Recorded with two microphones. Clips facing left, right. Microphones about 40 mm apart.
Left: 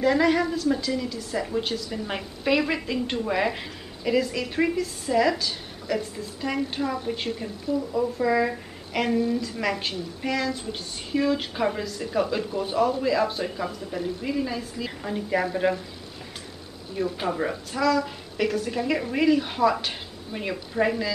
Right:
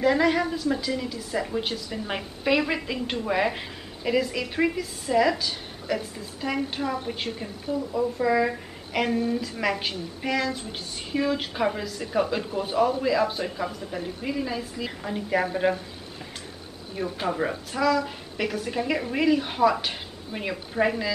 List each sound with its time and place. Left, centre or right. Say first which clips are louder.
0.0 s a woman's voice: left 1 dB; centre
7.9 s speech: right 1 dB; centre
9.1 s a woman's voice: left 4 dB; right
9.4 s a woman's voice: even; centre
17.2 s a woman's voice: even; centre